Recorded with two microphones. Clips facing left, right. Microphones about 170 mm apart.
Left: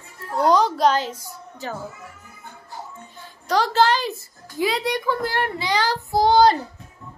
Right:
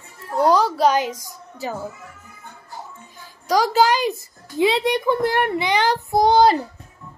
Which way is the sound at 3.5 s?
10° right (ahead or behind).